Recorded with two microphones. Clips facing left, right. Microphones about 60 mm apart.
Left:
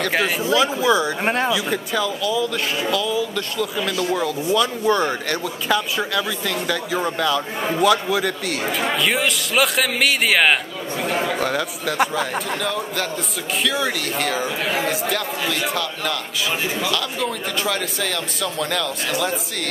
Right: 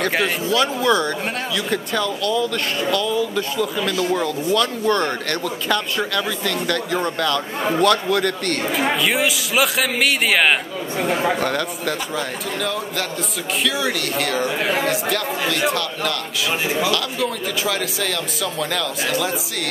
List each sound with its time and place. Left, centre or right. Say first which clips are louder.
0.0 s speech: right 1 dB; centre
0.4 s speech: left 1 dB; centre
1.2 s speech: left 5 dB; left
1.5 s speech: left 1 dB; centre